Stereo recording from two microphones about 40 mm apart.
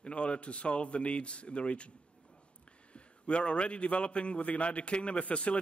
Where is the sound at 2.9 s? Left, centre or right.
Left.